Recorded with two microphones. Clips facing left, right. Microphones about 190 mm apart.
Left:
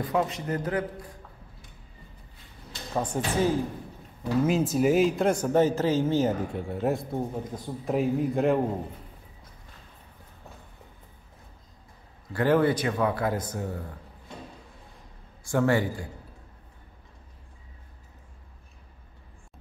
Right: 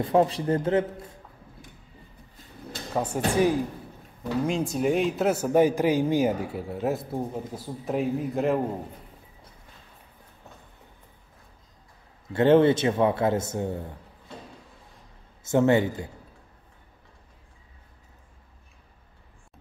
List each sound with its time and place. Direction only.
0.0 s a man's voice: 30° right (ahead or behind)
2.9 s speech: 10° right (ahead or behind)
4.5 s a man's voice: 5° left (ahead or behind)
12.3 s a man's voice: 25° right (ahead or behind)
15.4 s a man's voice: 20° right (ahead or behind)